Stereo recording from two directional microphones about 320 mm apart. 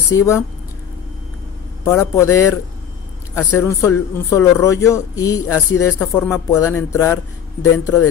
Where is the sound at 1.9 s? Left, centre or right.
Centre.